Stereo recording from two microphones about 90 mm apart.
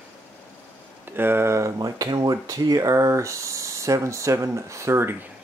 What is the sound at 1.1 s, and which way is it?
Speech, 25° right (ahead or behind).